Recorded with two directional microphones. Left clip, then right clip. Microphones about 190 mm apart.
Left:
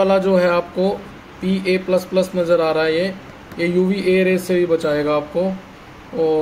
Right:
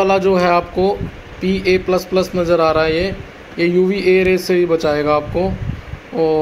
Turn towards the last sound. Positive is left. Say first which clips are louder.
# right 2 dB
turn(degrees=-15)  # may be behind; listen again after turning